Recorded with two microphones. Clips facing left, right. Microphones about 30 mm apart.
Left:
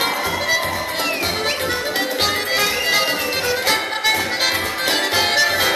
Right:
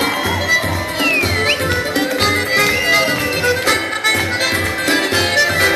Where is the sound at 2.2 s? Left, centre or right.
Centre.